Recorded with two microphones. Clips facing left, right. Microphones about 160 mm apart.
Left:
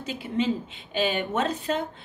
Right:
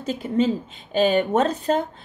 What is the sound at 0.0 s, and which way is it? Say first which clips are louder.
A woman's voice: right 5 dB; 45° right (ahead or behind).